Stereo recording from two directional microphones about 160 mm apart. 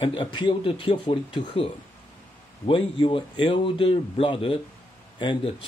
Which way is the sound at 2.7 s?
30° left (ahead or behind).